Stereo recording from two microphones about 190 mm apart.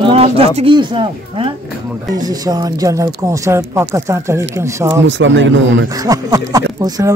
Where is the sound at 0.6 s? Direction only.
25° right (ahead or behind).